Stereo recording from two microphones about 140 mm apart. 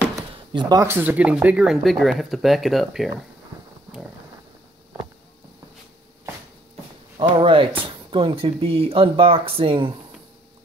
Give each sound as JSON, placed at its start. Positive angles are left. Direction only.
{"t": 0.5, "sound": "speech", "side_deg": -30}
{"t": 0.8, "sound": "speech", "side_deg": -15}
{"t": 7.2, "sound": "speech", "side_deg": -40}